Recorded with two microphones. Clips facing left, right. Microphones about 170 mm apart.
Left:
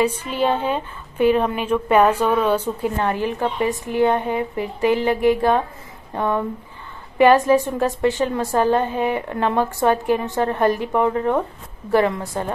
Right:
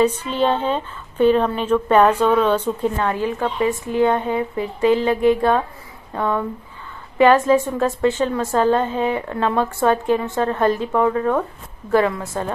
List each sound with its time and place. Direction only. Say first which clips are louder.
0.0 s a woman's voice: right 2 dB; 10° left (ahead or behind)